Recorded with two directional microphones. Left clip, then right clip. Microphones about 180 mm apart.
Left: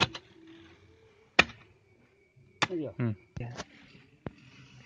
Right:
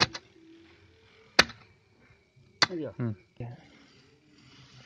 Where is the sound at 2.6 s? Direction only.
25° right (ahead or behind).